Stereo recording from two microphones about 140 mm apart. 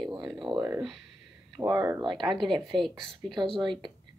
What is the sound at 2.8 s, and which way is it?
Speech, centre (ahead or behind).